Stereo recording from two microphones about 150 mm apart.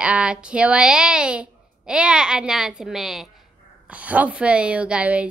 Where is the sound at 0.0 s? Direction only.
10° right (ahead or behind).